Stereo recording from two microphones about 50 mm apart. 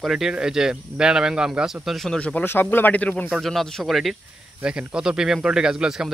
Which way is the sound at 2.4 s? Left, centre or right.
Left.